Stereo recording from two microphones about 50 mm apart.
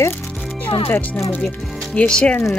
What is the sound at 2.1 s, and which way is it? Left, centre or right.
Speech, centre.